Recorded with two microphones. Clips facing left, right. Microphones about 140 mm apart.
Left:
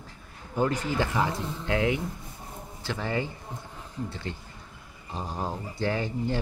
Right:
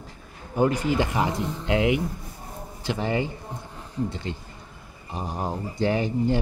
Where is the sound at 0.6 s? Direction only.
15° right (ahead or behind).